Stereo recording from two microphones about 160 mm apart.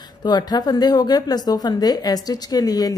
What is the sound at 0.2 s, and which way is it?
A woman's voice, 25° left (ahead or behind).